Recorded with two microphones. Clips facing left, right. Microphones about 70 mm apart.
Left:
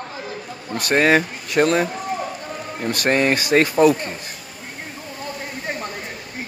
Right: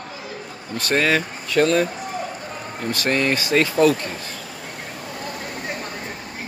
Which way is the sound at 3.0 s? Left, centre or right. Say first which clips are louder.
Left 3 dB; left.